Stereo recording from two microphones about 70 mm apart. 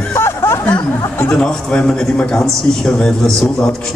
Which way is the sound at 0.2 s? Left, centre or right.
Left.